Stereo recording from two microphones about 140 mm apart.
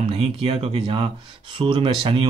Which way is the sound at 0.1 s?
40° right (ahead or behind).